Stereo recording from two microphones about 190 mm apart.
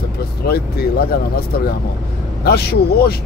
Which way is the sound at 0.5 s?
55° left (ahead or behind).